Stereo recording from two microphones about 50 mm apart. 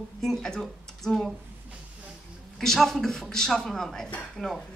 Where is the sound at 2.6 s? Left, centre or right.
Centre.